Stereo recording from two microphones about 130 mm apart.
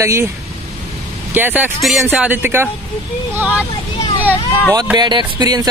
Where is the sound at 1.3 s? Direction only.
15° right (ahead or behind).